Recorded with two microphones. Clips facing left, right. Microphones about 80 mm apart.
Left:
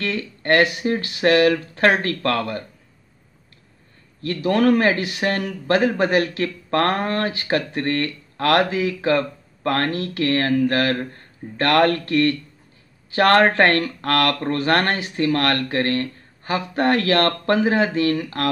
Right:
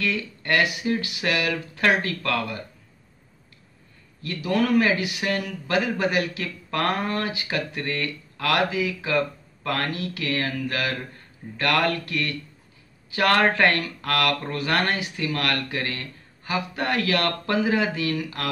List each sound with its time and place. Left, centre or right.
0.0 s speech: left
4.2 s speech: left